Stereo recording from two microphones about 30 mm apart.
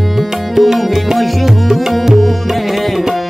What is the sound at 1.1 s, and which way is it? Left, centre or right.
Music, centre.